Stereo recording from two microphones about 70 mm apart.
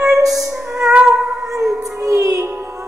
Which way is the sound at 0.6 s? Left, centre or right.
Centre.